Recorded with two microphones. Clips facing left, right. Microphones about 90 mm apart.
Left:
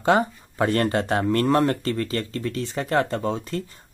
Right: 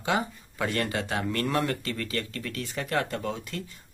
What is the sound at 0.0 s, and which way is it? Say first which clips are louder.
Speech: left 8 dB; 40° left (ahead or behind).